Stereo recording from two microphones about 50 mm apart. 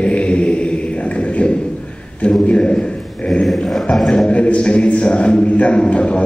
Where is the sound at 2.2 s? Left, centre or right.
Left.